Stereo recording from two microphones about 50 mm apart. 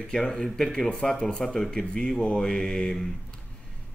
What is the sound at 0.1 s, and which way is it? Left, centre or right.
Speech, centre.